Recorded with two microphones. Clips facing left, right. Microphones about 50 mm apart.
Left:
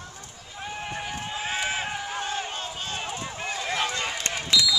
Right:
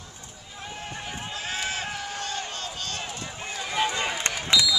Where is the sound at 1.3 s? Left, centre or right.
Centre.